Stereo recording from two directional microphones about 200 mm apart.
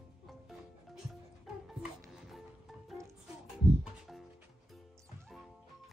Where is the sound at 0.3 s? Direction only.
Centre (ahead or behind).